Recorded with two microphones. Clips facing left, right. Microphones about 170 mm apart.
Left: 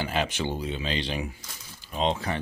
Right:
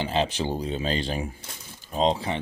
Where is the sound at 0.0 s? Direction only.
30° right (ahead or behind).